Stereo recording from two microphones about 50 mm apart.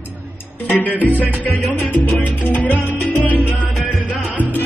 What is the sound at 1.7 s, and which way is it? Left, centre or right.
Salsa music, left.